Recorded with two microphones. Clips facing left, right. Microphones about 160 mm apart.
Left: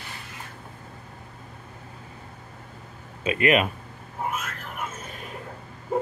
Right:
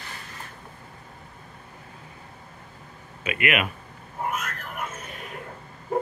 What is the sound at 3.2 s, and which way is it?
Speech, 30° left (ahead or behind).